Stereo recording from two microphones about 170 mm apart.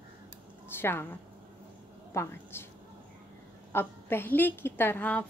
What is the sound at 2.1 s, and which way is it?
Speech, 15° left (ahead or behind).